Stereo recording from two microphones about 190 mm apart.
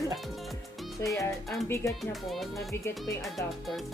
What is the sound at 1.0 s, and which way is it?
Speech, 15° left (ahead or behind).